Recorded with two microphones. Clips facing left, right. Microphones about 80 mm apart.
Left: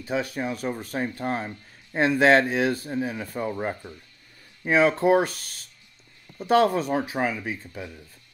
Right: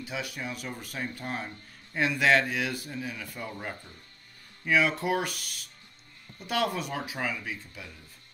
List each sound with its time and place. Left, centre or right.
0.0 s speech: left